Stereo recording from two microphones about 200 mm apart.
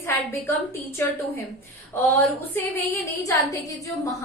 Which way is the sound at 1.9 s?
10° left (ahead or behind).